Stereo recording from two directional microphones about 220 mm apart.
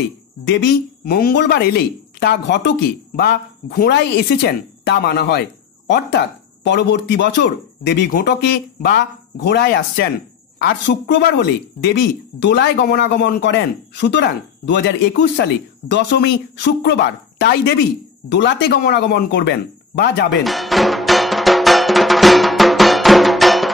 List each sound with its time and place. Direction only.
0.5 s speech: 55° left (ahead or behind)
20.4 s music: centre (ahead or behind)